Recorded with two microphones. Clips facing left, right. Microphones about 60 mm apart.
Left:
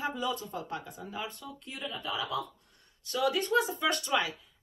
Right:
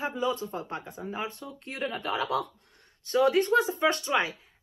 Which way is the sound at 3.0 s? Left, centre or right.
Right.